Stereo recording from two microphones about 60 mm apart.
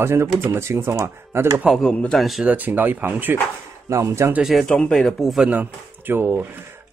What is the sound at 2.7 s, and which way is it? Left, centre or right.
Speech, right.